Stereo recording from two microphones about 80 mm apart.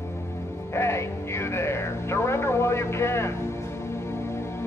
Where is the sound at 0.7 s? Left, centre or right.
Left.